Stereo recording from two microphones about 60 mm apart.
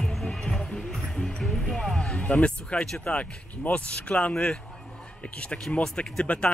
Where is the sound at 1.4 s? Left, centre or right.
Centre.